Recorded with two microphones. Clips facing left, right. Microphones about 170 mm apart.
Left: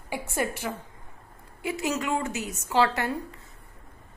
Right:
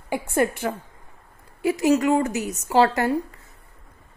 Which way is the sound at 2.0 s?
35° right (ahead or behind).